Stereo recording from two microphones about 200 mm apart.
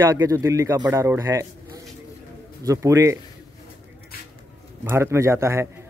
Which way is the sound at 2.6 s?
15° right (ahead or behind).